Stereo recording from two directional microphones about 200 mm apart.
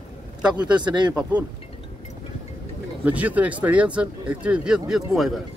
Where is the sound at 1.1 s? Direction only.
10° right (ahead or behind).